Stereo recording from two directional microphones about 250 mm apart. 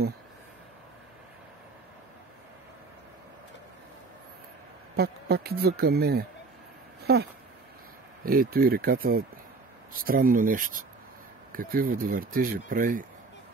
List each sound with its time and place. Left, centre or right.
4.9 s speech: right
8.3 s speech: right